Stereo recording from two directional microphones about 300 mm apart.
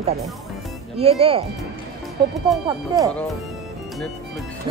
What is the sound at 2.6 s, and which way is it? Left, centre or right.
Speech, centre.